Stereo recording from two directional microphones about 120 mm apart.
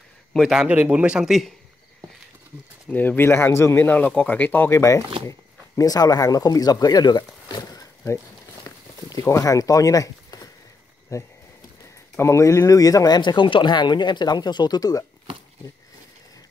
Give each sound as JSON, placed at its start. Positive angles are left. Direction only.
{"t": 0.3, "sound": "a man's voice", "side_deg": 0}
{"t": 2.9, "sound": "speech", "side_deg": 15}
{"t": 8.6, "sound": "a sound", "side_deg": 25}
{"t": 11.1, "sound": "speech", "side_deg": 25}